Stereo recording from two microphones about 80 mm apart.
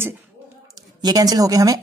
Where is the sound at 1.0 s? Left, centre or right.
Right.